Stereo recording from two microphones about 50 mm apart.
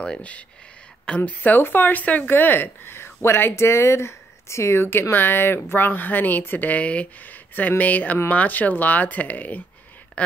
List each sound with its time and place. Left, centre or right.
0.0 s speech: left
1.6 s speech: left
6.8 s speech: left